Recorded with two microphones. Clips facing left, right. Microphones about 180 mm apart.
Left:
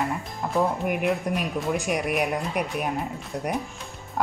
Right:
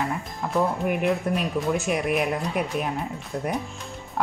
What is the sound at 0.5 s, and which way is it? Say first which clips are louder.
Speech: even; centre (ahead or behind).